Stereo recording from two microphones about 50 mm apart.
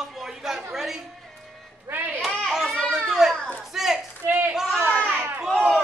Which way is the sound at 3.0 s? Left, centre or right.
Centre.